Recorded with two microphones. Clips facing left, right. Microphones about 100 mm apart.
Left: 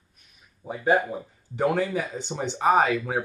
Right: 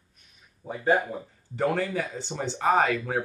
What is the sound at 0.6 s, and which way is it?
Speech, 10° left (ahead or behind).